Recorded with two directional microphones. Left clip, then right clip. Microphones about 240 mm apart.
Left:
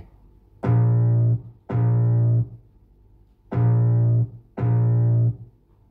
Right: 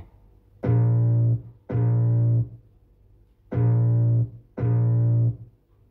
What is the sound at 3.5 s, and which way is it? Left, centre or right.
Music, centre.